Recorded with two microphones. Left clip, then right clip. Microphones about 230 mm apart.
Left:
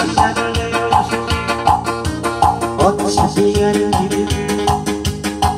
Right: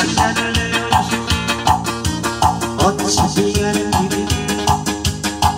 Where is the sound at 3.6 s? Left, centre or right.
Right.